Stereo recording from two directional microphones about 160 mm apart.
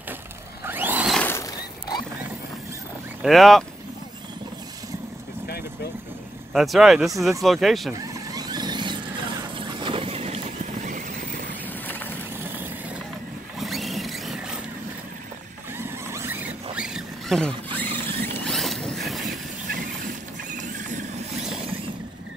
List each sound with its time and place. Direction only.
0.7 s a sound: 10° right (ahead or behind)
1.1 s a sound: 10° left (ahead or behind)
3.2 s speech: centre (ahead or behind)
6.5 s speech: centre (ahead or behind)
8.1 s squeal: 25° right (ahead or behind)
9.6 s boat: 30° right (ahead or behind); by 11.4 s 50° right (ahead or behind)
13.6 s a sound: centre (ahead or behind)
15.8 s zipper: 15° right (ahead or behind)
16.7 s squeal: 5° right (ahead or behind)
18.5 s vehicle: centre (ahead or behind)
20.5 s vehicle: 50° right (ahead or behind)